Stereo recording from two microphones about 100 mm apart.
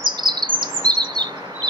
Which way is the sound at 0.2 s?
45° right (ahead or behind).